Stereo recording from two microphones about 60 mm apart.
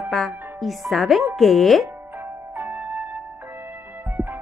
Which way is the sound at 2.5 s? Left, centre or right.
Right.